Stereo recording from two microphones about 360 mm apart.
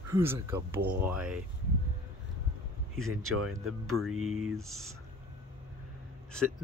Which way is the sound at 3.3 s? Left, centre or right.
Right.